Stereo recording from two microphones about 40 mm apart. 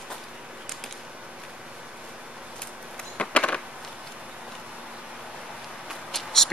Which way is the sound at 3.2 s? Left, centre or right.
Left.